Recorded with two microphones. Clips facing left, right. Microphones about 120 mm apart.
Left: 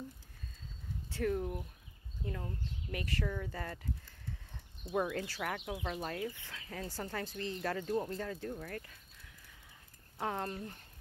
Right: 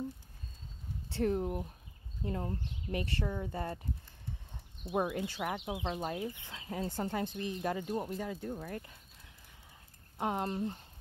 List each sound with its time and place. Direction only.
1.0 s speech: 25° right (ahead or behind)
10.1 s speech: 20° right (ahead or behind)